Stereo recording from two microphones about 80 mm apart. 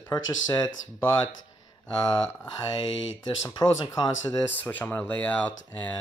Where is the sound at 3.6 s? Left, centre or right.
Left.